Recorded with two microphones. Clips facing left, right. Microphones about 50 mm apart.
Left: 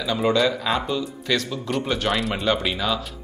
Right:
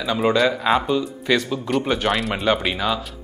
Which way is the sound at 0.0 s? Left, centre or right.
Centre.